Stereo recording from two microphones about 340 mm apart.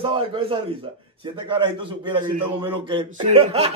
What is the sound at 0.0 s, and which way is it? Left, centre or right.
A man's voice, centre.